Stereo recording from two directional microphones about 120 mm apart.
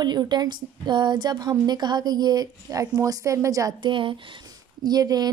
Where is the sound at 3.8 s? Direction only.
45° right (ahead or behind).